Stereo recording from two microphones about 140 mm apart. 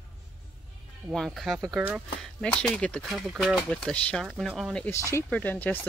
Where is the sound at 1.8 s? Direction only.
10° right (ahead or behind).